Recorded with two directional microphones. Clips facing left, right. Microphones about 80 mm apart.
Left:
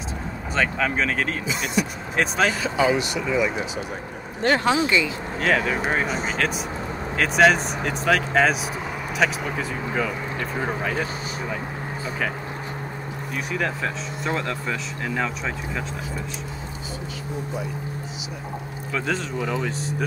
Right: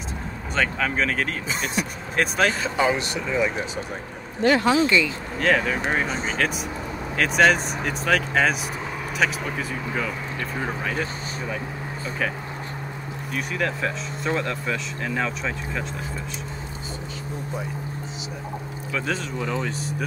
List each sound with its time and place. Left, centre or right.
0.6 s speech: centre
2.8 s speech: right
4.4 s speech: left
4.6 s speech: left
5.4 s speech: centre
13.3 s speech: centre
18.9 s speech: centre